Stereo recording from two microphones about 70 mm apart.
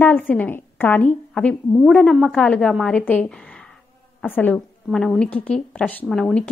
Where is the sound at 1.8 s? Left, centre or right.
Centre.